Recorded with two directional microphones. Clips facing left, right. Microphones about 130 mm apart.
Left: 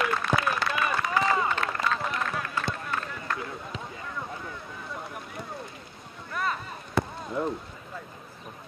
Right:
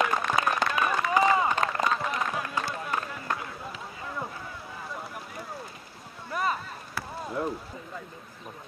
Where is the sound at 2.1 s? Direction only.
15° right (ahead or behind).